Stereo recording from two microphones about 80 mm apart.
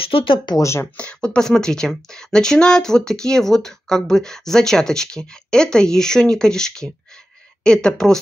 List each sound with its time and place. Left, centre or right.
0.2 s speech: left
0.6 s speech: left
0.9 s speech: centre